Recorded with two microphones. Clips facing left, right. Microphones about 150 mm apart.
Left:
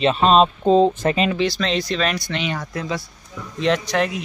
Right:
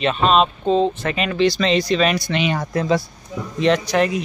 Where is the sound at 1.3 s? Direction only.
5° left (ahead or behind).